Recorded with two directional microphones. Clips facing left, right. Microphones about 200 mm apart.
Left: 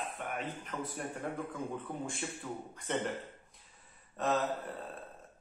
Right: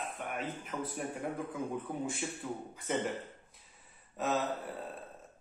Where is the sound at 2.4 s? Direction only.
20° right (ahead or behind).